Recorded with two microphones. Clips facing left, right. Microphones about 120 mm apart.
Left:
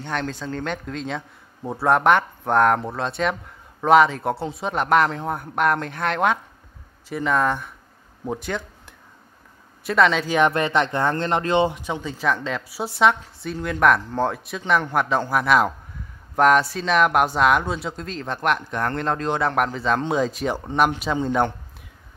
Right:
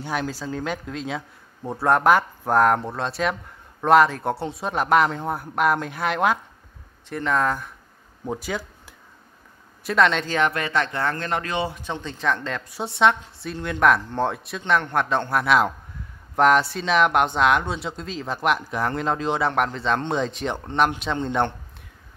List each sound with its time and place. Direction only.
0.0 s a man's voice: 5° right (ahead or behind)
10.3 s a man's voice: 20° left (ahead or behind); by 21.5 s 5° left (ahead or behind)